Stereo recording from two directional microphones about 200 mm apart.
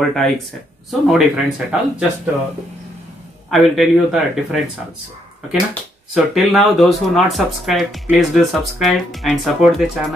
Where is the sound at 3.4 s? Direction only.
Centre (ahead or behind).